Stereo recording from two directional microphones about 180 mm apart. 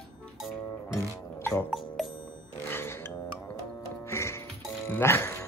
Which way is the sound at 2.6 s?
15° left (ahead or behind).